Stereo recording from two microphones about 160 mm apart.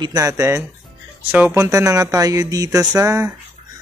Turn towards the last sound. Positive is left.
turn(degrees=-20)  # may be behind; listen again after turning